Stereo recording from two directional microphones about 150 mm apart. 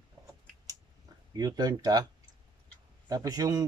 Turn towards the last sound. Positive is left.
turn(degrees=-25)  # may be behind; listen again after turning